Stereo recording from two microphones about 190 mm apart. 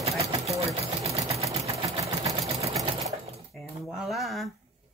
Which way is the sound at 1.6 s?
35° right (ahead or behind).